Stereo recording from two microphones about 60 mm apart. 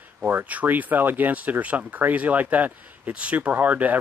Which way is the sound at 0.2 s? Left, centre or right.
Right.